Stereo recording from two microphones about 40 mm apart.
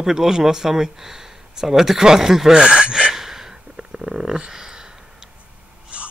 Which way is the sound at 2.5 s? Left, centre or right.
Right.